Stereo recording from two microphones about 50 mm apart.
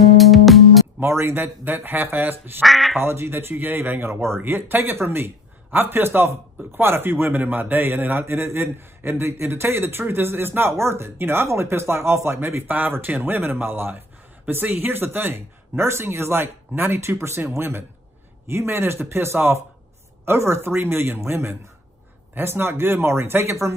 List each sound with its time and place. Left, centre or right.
0.0 s music: centre
0.9 s a man's voice: right
2.6 s speech: centre
3.0 s a man's voice: right
4.4 s a man's voice: right